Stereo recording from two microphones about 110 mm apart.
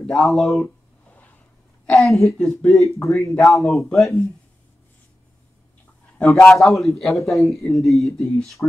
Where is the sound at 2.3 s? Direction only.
5° left (ahead or behind).